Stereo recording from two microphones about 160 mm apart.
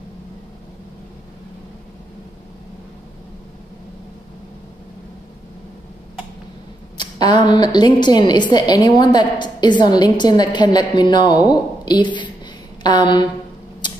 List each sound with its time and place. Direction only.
7.0 s a woman's voice: 25° left (ahead or behind)
13.8 s typewriter: 30° left (ahead or behind)